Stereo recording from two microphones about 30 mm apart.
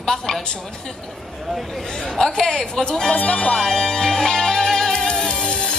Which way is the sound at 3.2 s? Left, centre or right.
Left.